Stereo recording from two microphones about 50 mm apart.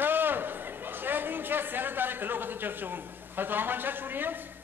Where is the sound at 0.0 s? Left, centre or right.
Right.